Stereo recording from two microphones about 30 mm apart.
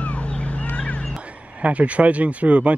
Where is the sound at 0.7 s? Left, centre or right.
Left.